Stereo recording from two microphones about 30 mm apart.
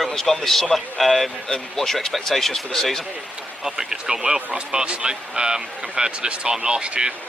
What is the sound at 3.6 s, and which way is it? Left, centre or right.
Speech, centre.